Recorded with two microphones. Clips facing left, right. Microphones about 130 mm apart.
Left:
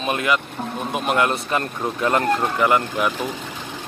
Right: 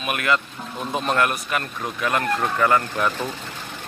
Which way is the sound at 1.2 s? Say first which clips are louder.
Left 2 dB; 25° left (ahead or behind).